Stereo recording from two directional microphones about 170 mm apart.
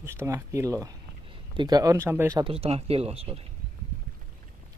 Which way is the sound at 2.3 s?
35° right (ahead or behind).